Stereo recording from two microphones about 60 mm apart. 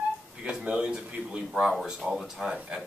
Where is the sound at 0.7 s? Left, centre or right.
Centre.